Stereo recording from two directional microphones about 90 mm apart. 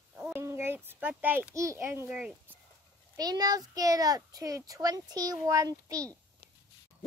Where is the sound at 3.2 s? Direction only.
45° right (ahead or behind).